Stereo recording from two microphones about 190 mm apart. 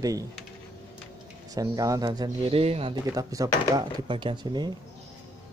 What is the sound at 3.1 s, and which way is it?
Speech, 20° right (ahead or behind).